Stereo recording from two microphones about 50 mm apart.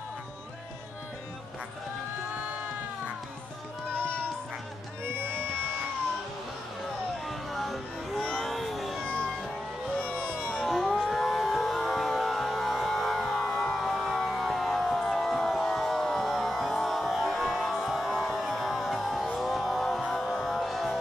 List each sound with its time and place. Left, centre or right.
5.0 s music: right
5.3 s music: centre
7.2 s music: centre
8.4 s a sound: centre
10.1 s music: centre
13.7 s a sound: centre
17.3 s music: centre